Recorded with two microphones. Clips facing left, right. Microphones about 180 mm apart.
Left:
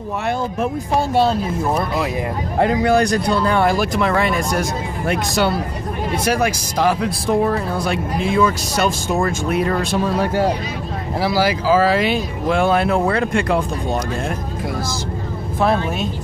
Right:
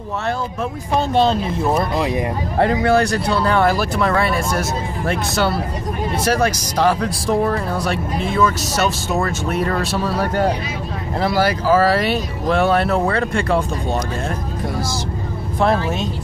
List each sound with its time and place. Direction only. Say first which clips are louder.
0.6 s speech: left 1 dB; 10° left (ahead or behind)
2.6 s speech: even; 15° left (ahead or behind)
7.9 s speech: left 1 dB; 40° right (ahead or behind)
8.4 s speech: even; 10° left (ahead or behind)